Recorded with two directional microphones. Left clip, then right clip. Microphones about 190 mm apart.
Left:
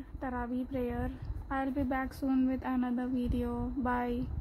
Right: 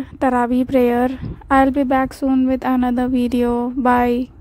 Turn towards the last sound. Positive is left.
turn(degrees=-50)  # may be behind; listen again after turning